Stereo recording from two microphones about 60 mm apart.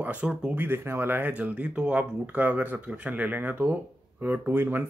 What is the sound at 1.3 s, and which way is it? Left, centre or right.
Speech, right.